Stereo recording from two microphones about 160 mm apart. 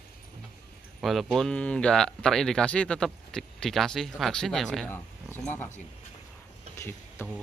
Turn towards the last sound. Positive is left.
turn(degrees=15)  # may be behind; listen again after turning